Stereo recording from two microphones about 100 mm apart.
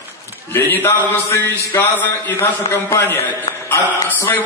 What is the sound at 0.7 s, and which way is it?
A man's voice, 25° left (ahead or behind).